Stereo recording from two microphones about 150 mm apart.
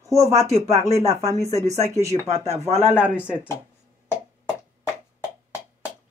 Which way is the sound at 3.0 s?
10° right (ahead or behind).